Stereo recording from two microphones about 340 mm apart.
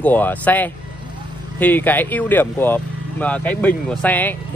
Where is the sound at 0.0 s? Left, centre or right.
Centre.